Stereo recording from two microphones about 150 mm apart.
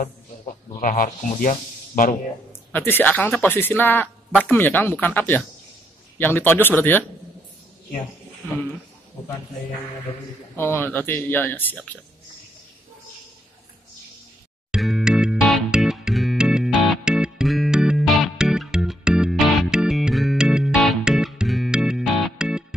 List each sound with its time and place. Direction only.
0.7 s a man's voice: 70° left (ahead or behind)
2.7 s speech: 15° left (ahead or behind)
10.5 s speech: 15° left (ahead or behind)
14.7 s music: centre (ahead or behind)